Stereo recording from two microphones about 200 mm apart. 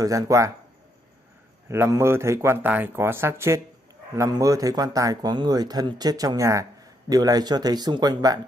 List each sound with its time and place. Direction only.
0.0 s a man's voice: 15° right (ahead or behind)
1.7 s a man's voice: 15° right (ahead or behind)